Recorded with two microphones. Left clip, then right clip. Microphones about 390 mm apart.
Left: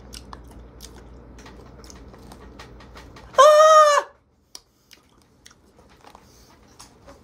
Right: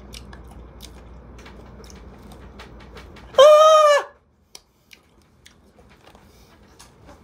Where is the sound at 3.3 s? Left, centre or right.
Centre.